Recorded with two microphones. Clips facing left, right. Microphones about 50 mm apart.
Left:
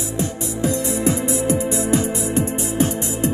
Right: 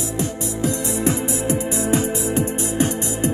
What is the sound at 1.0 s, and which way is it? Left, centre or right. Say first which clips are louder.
Music: left 1 dB; right.